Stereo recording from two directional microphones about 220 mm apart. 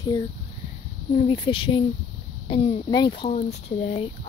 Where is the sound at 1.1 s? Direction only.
25° left (ahead or behind).